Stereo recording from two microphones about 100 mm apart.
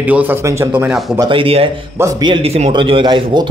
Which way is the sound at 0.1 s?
15° right (ahead or behind).